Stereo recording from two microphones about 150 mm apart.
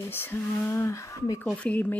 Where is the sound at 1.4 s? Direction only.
10° left (ahead or behind).